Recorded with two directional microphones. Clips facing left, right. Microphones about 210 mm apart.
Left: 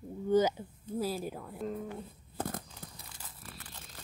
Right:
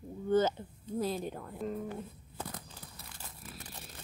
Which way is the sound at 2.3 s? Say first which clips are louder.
Left 6 dB; 50° left (ahead or behind).